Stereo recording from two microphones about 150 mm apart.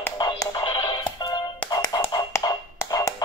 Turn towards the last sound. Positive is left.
turn(degrees=20)  # may be behind; listen again after turning